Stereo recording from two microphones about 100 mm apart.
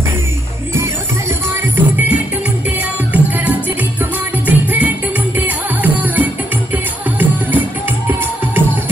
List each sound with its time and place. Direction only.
1.5 s music: 20° right (ahead or behind)